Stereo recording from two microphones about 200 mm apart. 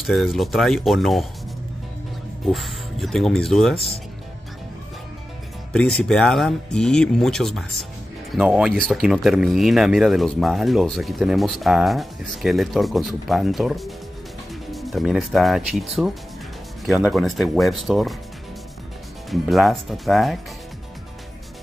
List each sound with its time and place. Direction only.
0.0 s speech: centre (ahead or behind)
2.4 s speech: centre (ahead or behind)
3.7 s speech: 30° left (ahead or behind)
5.7 s speech: 5° left (ahead or behind)
19.4 s speech: centre (ahead or behind)